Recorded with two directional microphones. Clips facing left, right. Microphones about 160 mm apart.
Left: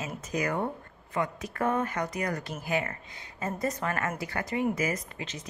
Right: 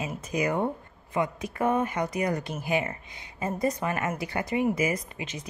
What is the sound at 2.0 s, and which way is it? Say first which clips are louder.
Speech: right 4 dB; 25° right (ahead or behind).